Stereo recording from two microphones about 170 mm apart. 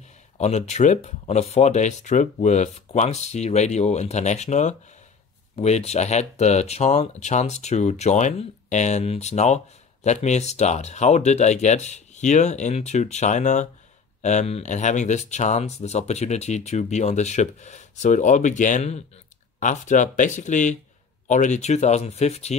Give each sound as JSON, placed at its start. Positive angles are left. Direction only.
{"t": 0.4, "sound": "speech", "side_deg": 40}